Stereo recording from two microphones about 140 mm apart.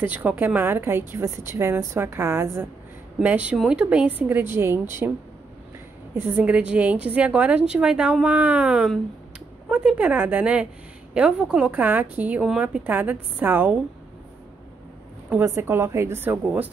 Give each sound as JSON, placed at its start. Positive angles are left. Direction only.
{"t": 0.0, "sound": "a woman's voice", "side_deg": -10}
{"t": 6.1, "sound": "a woman's voice", "side_deg": -15}
{"t": 15.2, "sound": "a woman's voice", "side_deg": -15}